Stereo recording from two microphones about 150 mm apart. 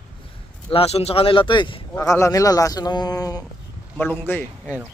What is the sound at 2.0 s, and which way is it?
Speech, 20° left (ahead or behind).